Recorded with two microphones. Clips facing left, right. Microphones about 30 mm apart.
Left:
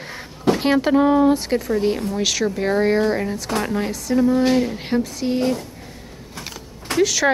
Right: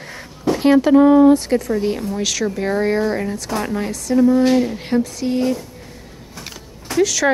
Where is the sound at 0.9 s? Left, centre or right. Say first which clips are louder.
Right 5 dB; centre.